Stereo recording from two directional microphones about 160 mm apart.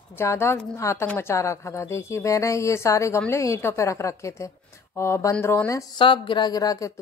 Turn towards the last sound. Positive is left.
turn(degrees=20)  # may be behind; listen again after turning